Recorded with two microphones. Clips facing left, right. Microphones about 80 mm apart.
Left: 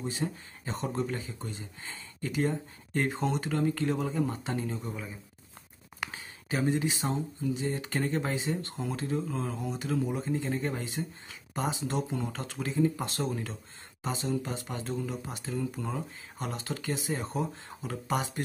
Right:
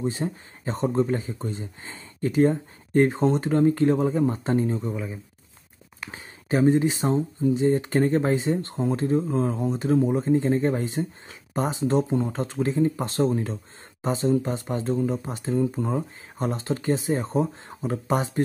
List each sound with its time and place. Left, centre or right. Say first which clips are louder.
0.0 s speech: right 6 dB; right
6.1 s speech: right 10 dB; right